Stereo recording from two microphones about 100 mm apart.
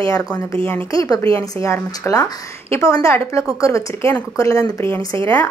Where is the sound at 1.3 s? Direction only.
65° right (ahead or behind).